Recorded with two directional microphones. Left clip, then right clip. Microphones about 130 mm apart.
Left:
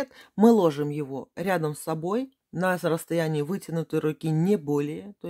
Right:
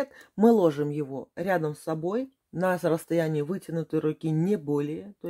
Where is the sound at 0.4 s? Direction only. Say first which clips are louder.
Left 1 dB; 20° left (ahead or behind).